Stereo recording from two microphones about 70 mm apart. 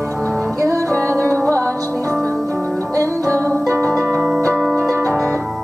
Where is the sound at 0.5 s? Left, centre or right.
Right.